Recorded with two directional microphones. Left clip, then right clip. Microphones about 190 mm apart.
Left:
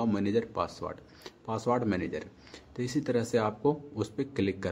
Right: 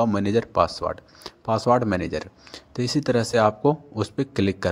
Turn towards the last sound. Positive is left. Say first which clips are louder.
# right 7 dB
turn(degrees=-35)  # may be behind; listen again after turning